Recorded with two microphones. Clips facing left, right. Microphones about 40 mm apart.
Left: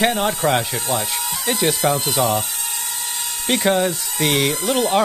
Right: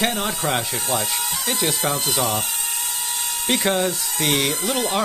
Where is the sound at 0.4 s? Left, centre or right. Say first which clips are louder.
Left 5 dB; left.